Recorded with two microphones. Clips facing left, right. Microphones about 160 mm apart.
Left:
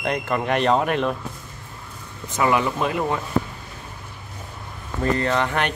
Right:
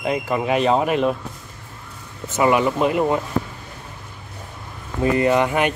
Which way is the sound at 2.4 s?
5° right (ahead or behind).